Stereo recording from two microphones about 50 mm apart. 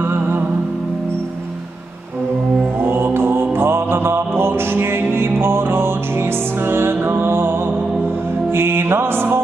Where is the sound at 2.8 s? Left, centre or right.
Right.